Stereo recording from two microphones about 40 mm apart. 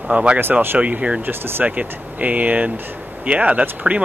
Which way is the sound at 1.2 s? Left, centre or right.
Right.